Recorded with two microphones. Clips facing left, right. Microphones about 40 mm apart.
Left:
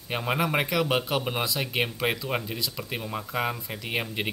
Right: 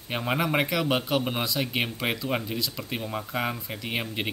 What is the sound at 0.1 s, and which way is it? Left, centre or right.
Speech, centre.